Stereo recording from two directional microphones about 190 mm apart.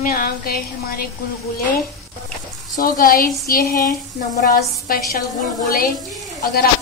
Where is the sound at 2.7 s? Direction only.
50° left (ahead or behind).